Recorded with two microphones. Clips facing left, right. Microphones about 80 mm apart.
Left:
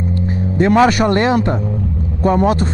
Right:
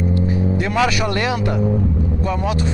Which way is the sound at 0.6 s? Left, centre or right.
Left.